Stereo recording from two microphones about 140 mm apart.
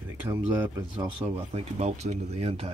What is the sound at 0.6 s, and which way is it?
Speech, 20° right (ahead or behind).